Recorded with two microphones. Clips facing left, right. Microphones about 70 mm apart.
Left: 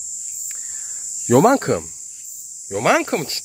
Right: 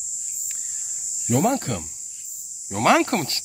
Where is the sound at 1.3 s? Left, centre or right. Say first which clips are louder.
Left 8 dB; left.